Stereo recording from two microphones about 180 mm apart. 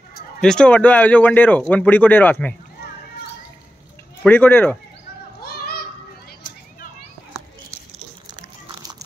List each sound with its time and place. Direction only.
0.4 s speech: 5° left (ahead or behind)
4.2 s speech: 10° left (ahead or behind)
5.4 s children playing: 60° left (ahead or behind)